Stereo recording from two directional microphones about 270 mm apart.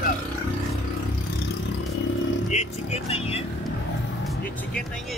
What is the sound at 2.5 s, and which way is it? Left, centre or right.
Speech, left.